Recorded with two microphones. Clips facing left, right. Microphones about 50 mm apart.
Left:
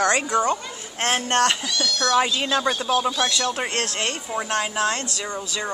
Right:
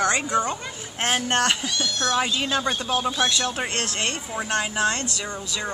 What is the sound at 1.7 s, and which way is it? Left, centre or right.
Speech, right.